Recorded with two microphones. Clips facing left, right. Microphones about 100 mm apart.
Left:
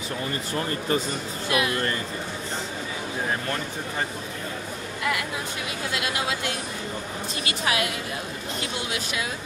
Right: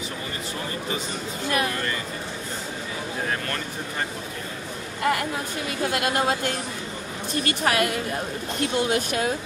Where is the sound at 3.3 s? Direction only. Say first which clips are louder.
Left 2 dB; 15° left (ahead or behind).